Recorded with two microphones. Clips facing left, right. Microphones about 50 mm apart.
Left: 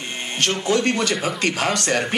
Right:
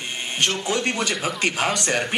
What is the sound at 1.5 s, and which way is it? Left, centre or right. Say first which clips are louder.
Speech: left 2 dB; centre.